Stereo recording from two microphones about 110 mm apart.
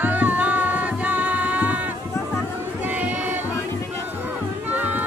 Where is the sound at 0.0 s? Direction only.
15° right (ahead or behind).